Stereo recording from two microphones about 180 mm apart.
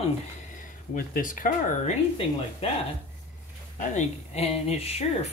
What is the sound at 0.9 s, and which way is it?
Speech, 50° left (ahead or behind).